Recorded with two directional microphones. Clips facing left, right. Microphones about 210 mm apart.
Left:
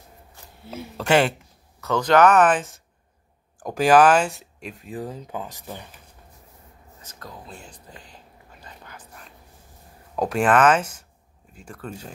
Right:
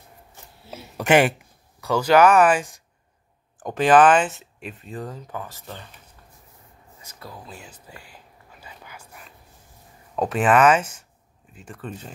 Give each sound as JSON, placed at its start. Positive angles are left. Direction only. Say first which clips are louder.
{"t": 0.9, "sound": "speech", "louder": "right 2 dB", "side_deg": -15}
{"t": 3.5, "sound": "speech", "louder": "even", "side_deg": 0}
{"t": 5.0, "sound": "speech", "louder": "left 2 dB", "side_deg": 20}
{"t": 7.0, "sound": "whispering", "louder": "right 1 dB", "side_deg": -10}
{"t": 10.1, "sound": "speech", "louder": "even", "side_deg": -5}
{"t": 11.7, "sound": "speech", "louder": "even", "side_deg": 10}